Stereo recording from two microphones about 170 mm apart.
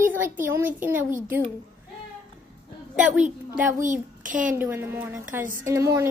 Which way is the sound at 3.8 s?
50° right (ahead or behind).